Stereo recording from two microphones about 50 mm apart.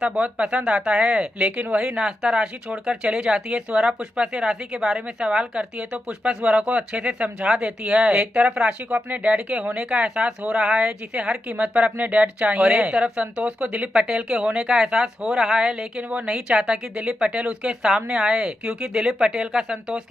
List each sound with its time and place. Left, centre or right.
0.2 s speech: right
2.0 s speech: centre
16.1 s speech: right
16.4 s speech: centre